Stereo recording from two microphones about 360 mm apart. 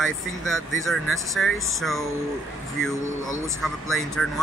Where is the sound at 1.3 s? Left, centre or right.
Centre.